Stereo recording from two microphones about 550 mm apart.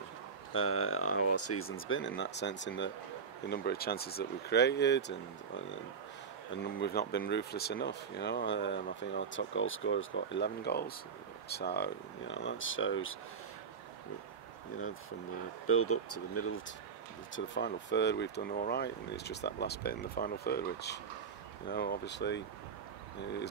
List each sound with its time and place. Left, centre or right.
0.5 s speech: left
15.6 s speech: left
17.6 s speech: centre